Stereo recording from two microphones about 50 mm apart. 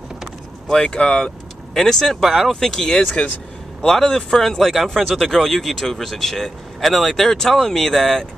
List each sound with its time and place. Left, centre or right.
0.7 s speech: centre